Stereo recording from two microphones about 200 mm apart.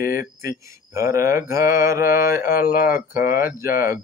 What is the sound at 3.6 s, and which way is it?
Mantra, 15° right (ahead or behind).